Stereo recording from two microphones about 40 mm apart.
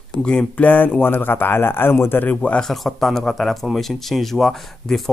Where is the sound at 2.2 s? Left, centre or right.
Left.